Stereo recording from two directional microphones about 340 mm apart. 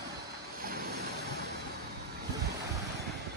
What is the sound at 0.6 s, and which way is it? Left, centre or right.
Vehicle, right.